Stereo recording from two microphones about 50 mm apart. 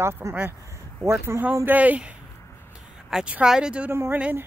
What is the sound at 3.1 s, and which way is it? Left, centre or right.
Speech, centre.